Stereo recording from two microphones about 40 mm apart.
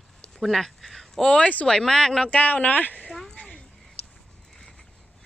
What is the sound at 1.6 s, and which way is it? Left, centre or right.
Speech, centre.